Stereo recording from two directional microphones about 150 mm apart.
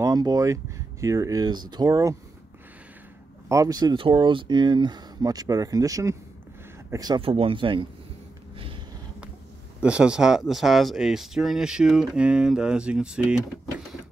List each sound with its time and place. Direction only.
0.0 s speech: 25° right (ahead or behind)
3.4 s speech: 20° right (ahead or behind)
7.2 s speech: 40° right (ahead or behind)
8.5 s a sound: 35° right (ahead or behind)
9.8 s speech: 5° right (ahead or behind)